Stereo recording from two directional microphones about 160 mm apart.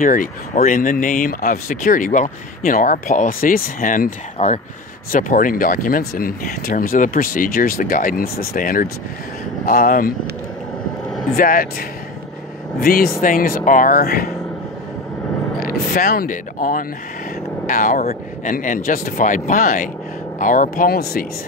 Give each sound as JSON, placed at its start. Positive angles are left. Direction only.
{"t": 0.0, "sound": "speech", "side_deg": 60}
{"t": 11.3, "sound": "speech", "side_deg": 60}
{"t": 12.8, "sound": "speech", "side_deg": 65}
{"t": 15.6, "sound": "speech", "side_deg": 65}